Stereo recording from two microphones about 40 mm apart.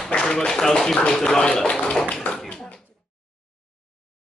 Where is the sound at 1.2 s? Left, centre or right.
Centre.